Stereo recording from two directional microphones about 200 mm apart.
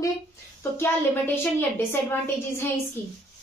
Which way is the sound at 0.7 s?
10° left (ahead or behind).